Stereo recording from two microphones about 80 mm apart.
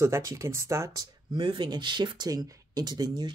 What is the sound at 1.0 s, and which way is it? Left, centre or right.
Speech, right.